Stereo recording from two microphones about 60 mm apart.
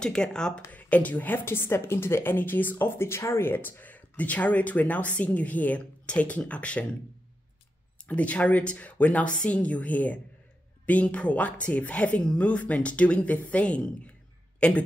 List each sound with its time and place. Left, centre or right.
0.0 s speech: centre
0.7 s speech: left
1.4 s a woman's voice: left
8.1 s speech: left